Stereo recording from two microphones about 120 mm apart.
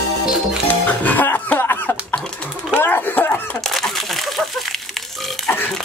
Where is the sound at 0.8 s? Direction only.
15° left (ahead or behind).